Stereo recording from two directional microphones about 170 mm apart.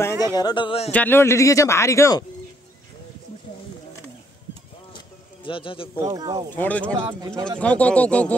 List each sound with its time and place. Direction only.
0.0 s speech: 25° left (ahead or behind)
0.9 s speech: 10° left (ahead or behind)
4.9 s bird: 30° left (ahead or behind)
6.0 s speech: 20° right (ahead or behind)
6.5 s speech: 10° left (ahead or behind)